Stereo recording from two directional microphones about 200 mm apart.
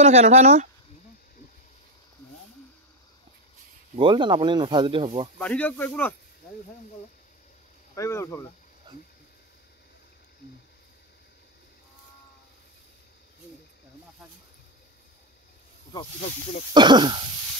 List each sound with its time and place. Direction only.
0.0 s speech: 35° right (ahead or behind)
3.9 s speech: 25° right (ahead or behind)
5.4 s speech: 5° left (ahead or behind)
7.9 s speech: 15° left (ahead or behind)
15.9 s speech: 25° left (ahead or behind)
16.7 s speech: 20° right (ahead or behind)